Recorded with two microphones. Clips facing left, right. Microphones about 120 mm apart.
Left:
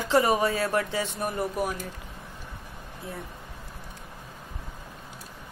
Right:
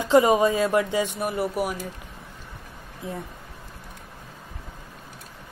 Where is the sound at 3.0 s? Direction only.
20° right (ahead or behind).